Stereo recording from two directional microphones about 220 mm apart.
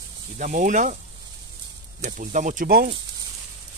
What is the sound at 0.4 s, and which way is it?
Speech, 35° right (ahead or behind).